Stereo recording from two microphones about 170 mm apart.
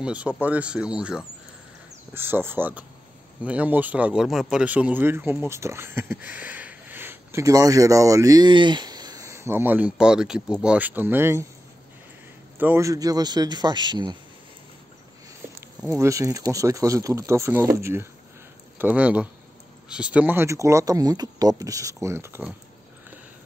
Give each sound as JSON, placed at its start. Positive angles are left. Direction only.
{"t": 0.0, "sound": "speech", "side_deg": -5}
{"t": 12.5, "sound": "a man's voice", "side_deg": -15}
{"t": 15.9, "sound": "speech", "side_deg": -20}